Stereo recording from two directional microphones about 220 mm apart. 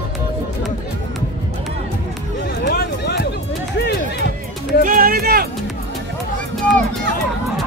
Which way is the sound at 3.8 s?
45° left (ahead or behind).